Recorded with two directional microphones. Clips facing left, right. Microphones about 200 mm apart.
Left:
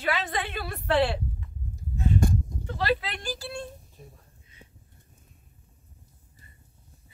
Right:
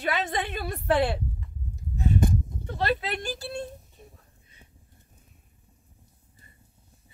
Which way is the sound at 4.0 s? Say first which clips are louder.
Left 2 dB; centre (ahead or behind).